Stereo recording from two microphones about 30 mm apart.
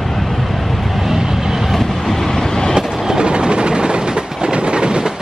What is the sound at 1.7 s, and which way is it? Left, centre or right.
Vehicle, centre.